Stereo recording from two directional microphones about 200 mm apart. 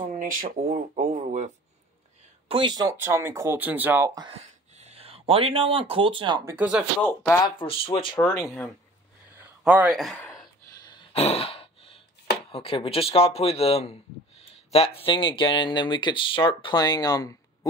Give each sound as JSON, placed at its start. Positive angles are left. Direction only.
{"t": 0.2, "sound": "speech", "side_deg": -45}
{"t": 2.4, "sound": "speech", "side_deg": -25}
{"t": 4.3, "sound": "speech", "side_deg": -35}
{"t": 6.5, "sound": "speech", "side_deg": -5}
{"t": 7.1, "sound": "speech", "side_deg": 10}
{"t": 7.5, "sound": "speech", "side_deg": 25}
{"t": 8.2, "sound": "speech", "side_deg": 10}
{"t": 9.4, "sound": "a sound", "side_deg": -10}
{"t": 10.9, "sound": "a sound", "side_deg": 25}
{"t": 12.4, "sound": "speech", "side_deg": 30}